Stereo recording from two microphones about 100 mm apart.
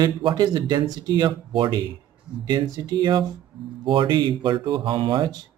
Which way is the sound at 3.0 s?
50° right (ahead or behind).